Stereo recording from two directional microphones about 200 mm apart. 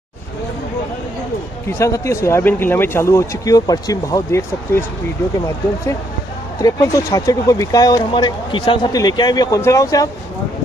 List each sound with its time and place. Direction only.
1.8 s speech: 15° left (ahead or behind)
6.6 s speech: 15° left (ahead or behind)